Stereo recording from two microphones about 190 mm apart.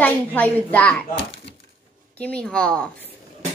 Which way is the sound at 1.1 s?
65° left (ahead or behind).